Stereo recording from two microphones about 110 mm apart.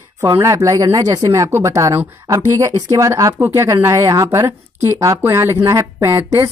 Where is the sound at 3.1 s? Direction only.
25° right (ahead or behind).